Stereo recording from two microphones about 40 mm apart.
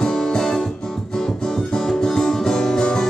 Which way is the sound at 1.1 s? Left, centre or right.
Centre.